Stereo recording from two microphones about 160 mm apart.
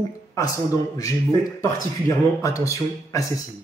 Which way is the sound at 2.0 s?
20° left (ahead or behind).